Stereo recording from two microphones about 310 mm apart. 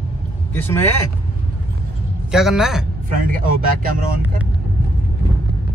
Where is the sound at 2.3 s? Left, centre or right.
Centre.